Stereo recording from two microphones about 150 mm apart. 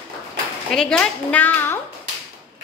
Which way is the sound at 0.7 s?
5° left (ahead or behind).